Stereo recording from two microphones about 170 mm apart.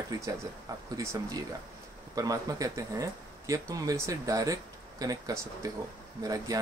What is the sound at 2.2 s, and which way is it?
Speech, 20° right (ahead or behind).